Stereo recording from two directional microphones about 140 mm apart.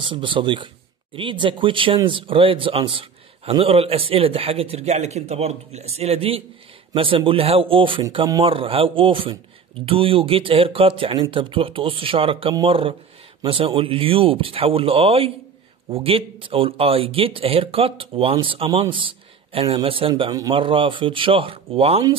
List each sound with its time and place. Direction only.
0.0 s a man's voice: 35° right (ahead or behind)